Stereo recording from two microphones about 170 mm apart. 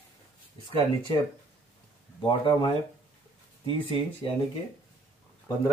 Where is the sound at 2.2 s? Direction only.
30° left (ahead or behind).